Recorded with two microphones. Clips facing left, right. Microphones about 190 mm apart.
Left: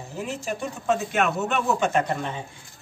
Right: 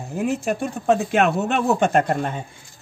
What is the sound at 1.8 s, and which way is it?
Speech, 55° right (ahead or behind).